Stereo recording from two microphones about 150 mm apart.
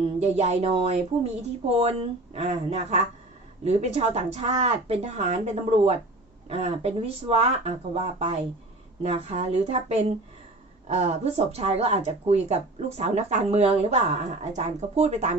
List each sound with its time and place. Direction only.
0.2 s speech: 50° right (ahead or behind)